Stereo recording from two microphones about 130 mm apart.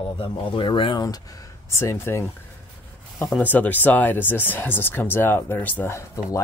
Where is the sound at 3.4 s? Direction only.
15° left (ahead or behind).